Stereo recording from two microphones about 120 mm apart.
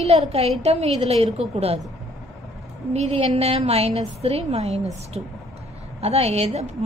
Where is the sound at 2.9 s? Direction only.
65° right (ahead or behind).